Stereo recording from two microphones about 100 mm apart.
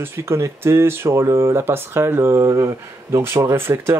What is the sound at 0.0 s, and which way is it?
Speech, 25° right (ahead or behind).